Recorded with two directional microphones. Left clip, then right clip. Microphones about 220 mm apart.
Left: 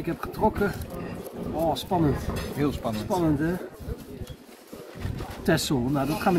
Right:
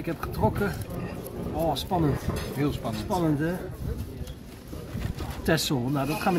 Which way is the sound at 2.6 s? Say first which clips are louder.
Left 3 dB; 40° left (ahead or behind).